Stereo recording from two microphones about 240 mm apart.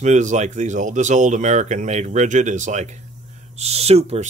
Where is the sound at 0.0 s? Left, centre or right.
Right.